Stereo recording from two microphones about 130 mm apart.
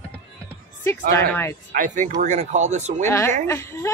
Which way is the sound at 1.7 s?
85° right.